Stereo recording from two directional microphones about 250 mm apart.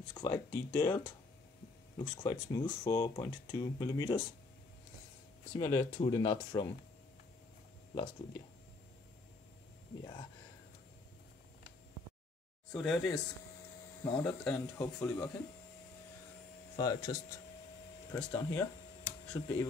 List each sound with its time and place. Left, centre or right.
0.1 s speech: centre
5.6 s speech: centre
7.9 s speech: centre
12.7 s speech: centre
16.7 s speech: centre